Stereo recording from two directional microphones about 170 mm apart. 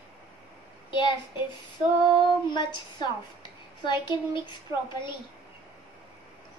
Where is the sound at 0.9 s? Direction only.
30° left (ahead or behind).